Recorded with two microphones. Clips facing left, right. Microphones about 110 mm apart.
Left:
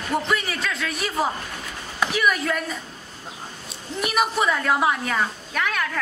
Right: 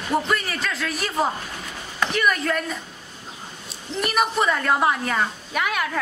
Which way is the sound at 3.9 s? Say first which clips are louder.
Right 1 dB; centre (ahead or behind).